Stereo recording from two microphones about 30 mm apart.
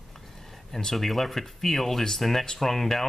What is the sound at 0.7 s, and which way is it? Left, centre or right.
Speech, centre.